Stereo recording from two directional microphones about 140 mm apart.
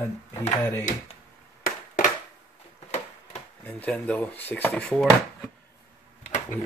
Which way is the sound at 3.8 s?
10° left (ahead or behind).